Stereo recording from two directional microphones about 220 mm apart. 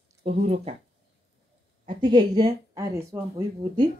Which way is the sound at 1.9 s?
20° right (ahead or behind).